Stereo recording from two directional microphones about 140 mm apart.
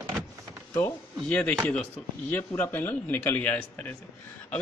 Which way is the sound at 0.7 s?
15° left (ahead or behind).